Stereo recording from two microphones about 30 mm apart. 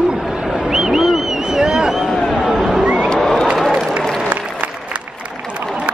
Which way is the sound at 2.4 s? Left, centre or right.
Centre.